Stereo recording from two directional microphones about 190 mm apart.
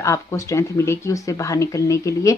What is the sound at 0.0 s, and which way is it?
Speech, 15° left (ahead or behind).